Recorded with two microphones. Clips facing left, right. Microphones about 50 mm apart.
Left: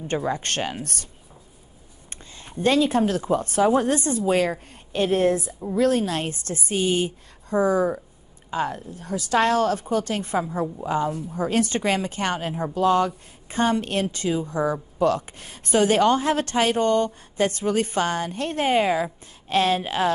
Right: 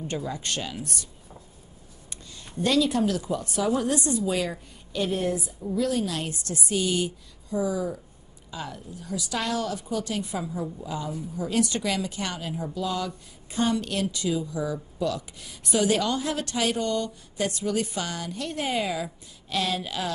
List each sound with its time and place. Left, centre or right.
0.2 s a woman's voice: left
2.0 s a woman's voice: left
7.4 s a woman's voice: left